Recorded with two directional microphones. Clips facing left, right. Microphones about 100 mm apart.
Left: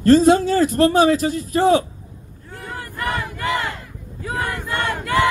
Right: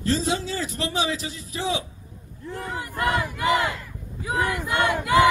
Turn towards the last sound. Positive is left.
turn(degrees=-15)  # may be behind; listen again after turning